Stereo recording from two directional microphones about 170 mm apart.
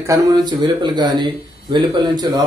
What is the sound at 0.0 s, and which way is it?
A man's voice, 20° right (ahead or behind).